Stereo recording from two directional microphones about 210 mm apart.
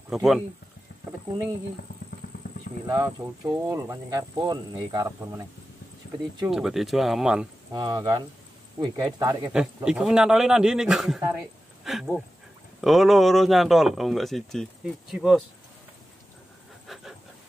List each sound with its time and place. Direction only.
0.1 s speech: centre (ahead or behind)
2.2 s a sound: 45° left (ahead or behind)
2.9 s speech: 15° right (ahead or behind)
6.0 s insect: 45° left (ahead or behind)
6.5 s speech: centre (ahead or behind)
7.7 s speech: 20° right (ahead or behind)
9.8 s speech: 5° right (ahead or behind)
16.8 s pant: centre (ahead or behind)